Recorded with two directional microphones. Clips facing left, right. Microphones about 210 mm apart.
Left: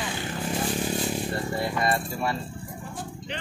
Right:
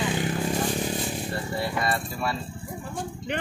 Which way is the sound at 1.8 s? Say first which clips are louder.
Left 2 dB; 20° left (ahead or behind).